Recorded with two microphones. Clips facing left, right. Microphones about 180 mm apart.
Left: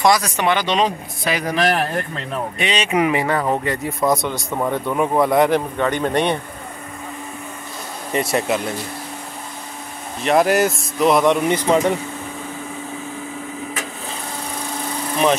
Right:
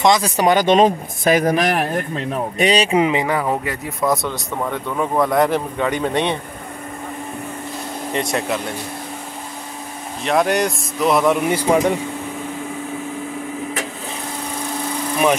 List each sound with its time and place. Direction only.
0.0 s speech: 20° right (ahead or behind)
0.4 s speech: 40° right (ahead or behind)
1.6 s a man's voice: 15° right (ahead or behind)
2.5 s speech: 40° right (ahead or behind); by 3.4 s 15° right (ahead or behind)
3.4 s speech: 5° right (ahead or behind)
4.6 s speech: 10° left (ahead or behind)
8.1 s speech: 5° left (ahead or behind)
10.2 s speech: centre (ahead or behind)